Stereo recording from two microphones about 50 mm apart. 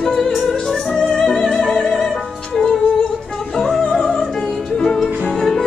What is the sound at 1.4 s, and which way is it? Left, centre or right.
Music, centre.